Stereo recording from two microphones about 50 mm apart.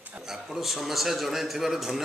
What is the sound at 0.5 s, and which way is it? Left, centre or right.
Speech, centre.